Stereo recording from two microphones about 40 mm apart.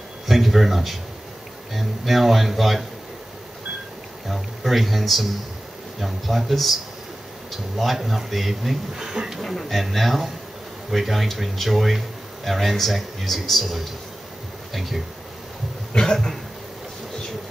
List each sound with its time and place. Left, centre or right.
0.3 s speech: centre
4.3 s speech: centre
8.9 s speech: centre
9.4 s speech: centre
15.9 s cough: centre